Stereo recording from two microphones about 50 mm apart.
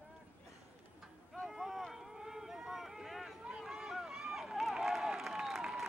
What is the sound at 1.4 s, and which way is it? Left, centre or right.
Run, centre.